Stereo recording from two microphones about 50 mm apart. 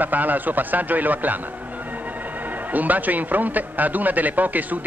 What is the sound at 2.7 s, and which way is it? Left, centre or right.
A man's voice, right.